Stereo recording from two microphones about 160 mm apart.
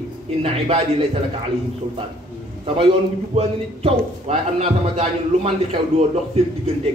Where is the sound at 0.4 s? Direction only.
35° right (ahead or behind).